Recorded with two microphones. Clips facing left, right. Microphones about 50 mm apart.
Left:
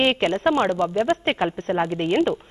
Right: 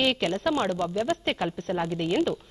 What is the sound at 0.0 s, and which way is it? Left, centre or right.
Speech, left.